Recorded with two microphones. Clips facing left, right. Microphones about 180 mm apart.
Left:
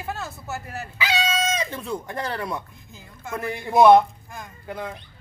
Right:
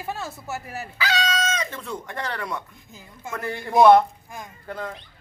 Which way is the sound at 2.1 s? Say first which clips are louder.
Left 2 dB; 25° left (ahead or behind).